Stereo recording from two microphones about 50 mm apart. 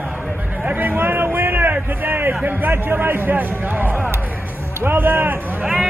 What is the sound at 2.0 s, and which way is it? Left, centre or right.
Music, right.